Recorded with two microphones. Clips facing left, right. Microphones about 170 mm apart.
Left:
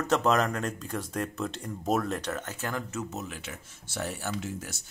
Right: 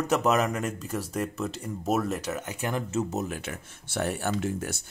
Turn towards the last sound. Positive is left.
turn(degrees=-55)  # may be behind; listen again after turning